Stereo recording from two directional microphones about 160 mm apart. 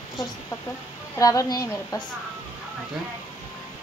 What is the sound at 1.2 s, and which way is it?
Speech, 20° left (ahead or behind).